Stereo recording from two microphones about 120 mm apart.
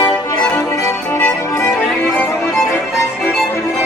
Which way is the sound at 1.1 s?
20° left (ahead or behind).